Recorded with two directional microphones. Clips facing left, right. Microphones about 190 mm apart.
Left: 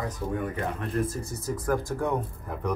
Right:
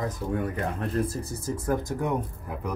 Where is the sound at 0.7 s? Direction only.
35° right (ahead or behind); by 2.6 s 15° right (ahead or behind).